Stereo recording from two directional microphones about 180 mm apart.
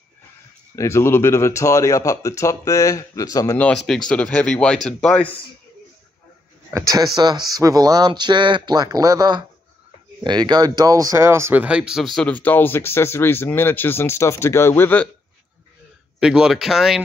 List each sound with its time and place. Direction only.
0.7 s speech: 15° left (ahead or behind)
3.5 s speech: 5° left (ahead or behind)
6.7 s speech: 20° right (ahead or behind); by 15.0 s 10° left (ahead or behind)
16.2 s speech: 5° right (ahead or behind)